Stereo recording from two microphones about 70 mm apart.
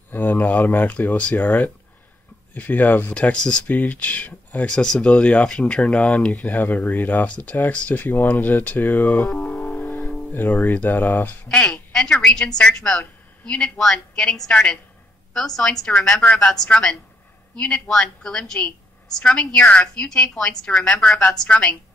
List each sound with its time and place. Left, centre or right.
0.1 s speech: left
2.5 s speech: left
3.2 s speech: centre
4.6 s speech: centre; by 9.0 s left
9.1 s music: centre
10.9 s speech: left
11.4 s speech: centre